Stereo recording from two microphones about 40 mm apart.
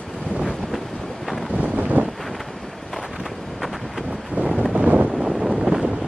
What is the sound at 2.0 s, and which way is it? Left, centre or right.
Wind noise, right.